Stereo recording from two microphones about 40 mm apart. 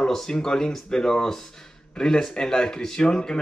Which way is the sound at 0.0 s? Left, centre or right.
Centre.